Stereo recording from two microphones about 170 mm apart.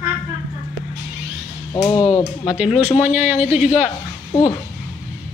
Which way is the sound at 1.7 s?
25° left (ahead or behind).